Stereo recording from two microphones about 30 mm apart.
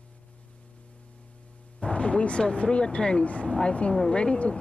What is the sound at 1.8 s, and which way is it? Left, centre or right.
Speech, left.